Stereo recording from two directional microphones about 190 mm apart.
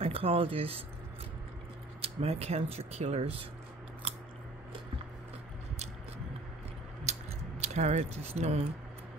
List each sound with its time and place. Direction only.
0.0 s speech: 30° right (ahead or behind)
2.0 s speech: 30° right (ahead or behind)
7.1 s a sound: 35° right (ahead or behind)